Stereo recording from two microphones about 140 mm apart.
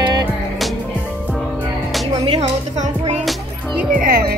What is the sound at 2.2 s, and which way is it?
Music, 45° right (ahead or behind).